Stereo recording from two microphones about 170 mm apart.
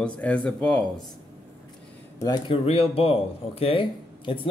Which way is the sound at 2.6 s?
35° left (ahead or behind).